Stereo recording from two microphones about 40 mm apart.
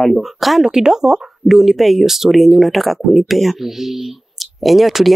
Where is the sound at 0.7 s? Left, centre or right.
Centre.